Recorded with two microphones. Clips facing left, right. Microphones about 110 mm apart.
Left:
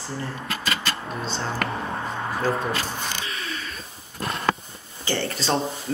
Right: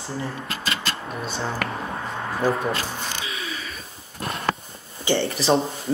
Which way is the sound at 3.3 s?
5° right (ahead or behind).